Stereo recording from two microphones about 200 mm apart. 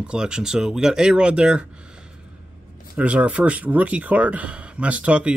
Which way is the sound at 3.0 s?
5° right (ahead or behind).